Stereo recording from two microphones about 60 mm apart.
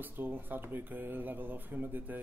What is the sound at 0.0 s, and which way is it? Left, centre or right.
Speech, right.